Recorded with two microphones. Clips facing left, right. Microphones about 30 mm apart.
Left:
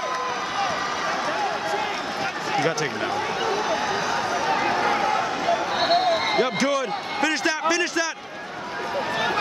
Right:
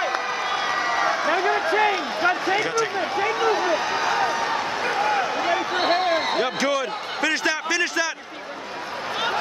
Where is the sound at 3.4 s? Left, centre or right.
Centre.